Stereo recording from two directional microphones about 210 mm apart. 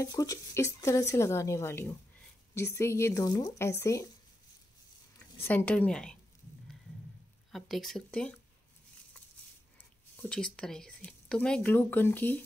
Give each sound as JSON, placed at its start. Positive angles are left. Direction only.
{"t": 0.0, "sound": "speech", "side_deg": 15}
{"t": 5.4, "sound": "speech", "side_deg": 10}
{"t": 7.5, "sound": "speech", "side_deg": 0}
{"t": 10.1, "sound": "speech", "side_deg": 5}